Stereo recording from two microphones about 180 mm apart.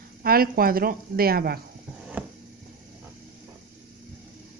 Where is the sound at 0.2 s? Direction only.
55° right (ahead or behind).